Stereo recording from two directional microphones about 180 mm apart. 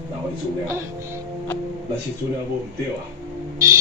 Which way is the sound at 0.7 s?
15° right (ahead or behind).